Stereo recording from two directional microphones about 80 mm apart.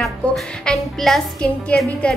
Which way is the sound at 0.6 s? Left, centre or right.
Centre.